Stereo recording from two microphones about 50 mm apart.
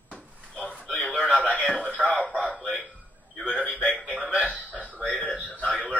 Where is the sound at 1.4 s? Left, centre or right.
Left.